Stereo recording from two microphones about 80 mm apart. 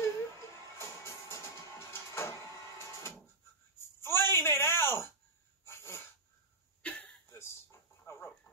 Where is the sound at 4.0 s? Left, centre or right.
Left.